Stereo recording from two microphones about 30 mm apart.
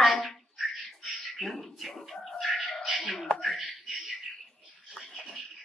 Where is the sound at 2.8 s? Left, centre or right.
Centre.